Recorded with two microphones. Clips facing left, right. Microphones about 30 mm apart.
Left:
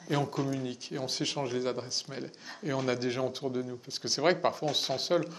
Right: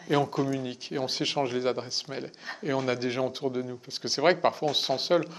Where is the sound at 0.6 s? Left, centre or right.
Right.